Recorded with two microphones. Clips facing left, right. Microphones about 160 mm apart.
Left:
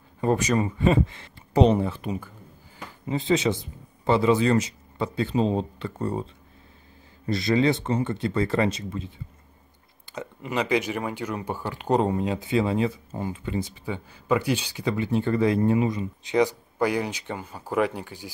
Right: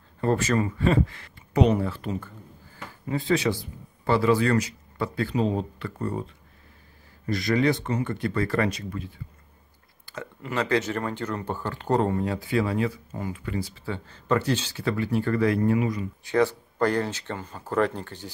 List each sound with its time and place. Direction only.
0.2 s speech: 15° left (ahead or behind)
7.2 s speech: 25° left (ahead or behind)
10.1 s speech: 15° left (ahead or behind)